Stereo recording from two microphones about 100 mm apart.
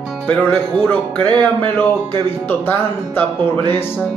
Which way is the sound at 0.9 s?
15° left (ahead or behind).